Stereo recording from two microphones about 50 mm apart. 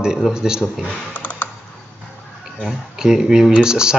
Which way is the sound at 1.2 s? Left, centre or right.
Left.